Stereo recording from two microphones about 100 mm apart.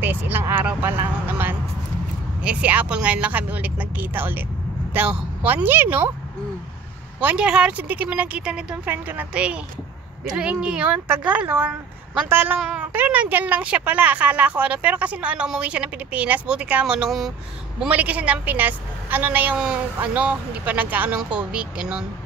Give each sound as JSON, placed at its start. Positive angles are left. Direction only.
{"t": 0.0, "sound": "vehicle", "side_deg": -20}
{"t": 2.4, "sound": "a woman's voice", "side_deg": -15}
{"t": 7.2, "sound": "a woman's voice", "side_deg": -10}
{"t": 12.5, "sound": "speech", "side_deg": -10}